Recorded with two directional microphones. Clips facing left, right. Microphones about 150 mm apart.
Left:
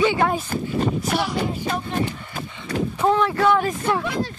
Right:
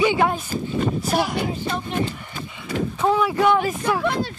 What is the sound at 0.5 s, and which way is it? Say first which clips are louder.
Speech: left 1 dB; 55° left (ahead or behind).